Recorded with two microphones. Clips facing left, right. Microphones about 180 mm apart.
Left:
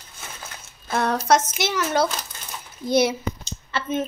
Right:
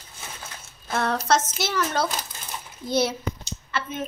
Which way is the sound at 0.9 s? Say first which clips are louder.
Left 3 dB; 15° left (ahead or behind).